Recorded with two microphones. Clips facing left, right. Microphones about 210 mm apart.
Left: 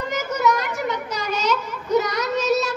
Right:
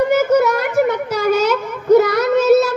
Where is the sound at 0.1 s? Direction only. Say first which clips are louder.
Right 9 dB; 55° right (ahead or behind).